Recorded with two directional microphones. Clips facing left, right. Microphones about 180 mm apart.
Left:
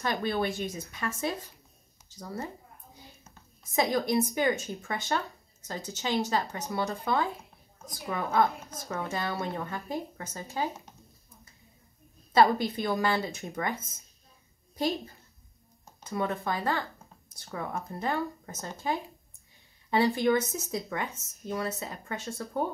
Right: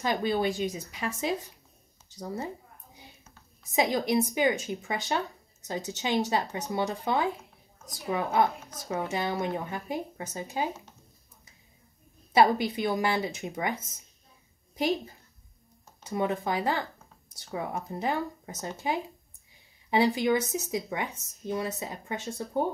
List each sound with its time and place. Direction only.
0.0 s speech: 15° right (ahead or behind)
3.7 s speech: 15° right (ahead or behind)
12.4 s speech: 15° right (ahead or behind)